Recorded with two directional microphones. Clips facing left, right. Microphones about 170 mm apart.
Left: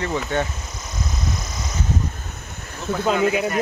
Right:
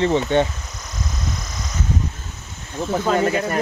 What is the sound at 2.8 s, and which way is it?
Speech, 50° right (ahead or behind).